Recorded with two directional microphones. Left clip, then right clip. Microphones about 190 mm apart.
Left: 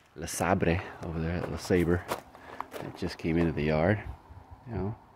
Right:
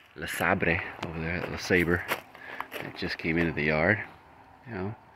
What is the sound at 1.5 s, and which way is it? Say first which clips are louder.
Walk: right 2 dB; 15° left (ahead or behind).